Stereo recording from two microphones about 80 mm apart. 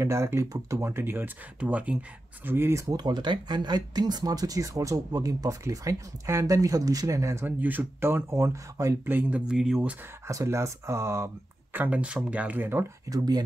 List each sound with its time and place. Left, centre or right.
0.0 s speech: right
1.6 s speech: centre
2.5 s speech: right
3.0 s speech: right
7.4 s speech: right
9.0 s speech: right
9.5 s speech: centre
10.2 s speech: right
11.7 s speech: centre
13.1 s speech: right